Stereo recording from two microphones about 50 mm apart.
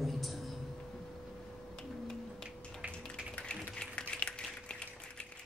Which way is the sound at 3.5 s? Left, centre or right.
Centre.